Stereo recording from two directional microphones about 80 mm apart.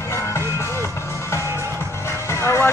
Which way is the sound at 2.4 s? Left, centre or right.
Left.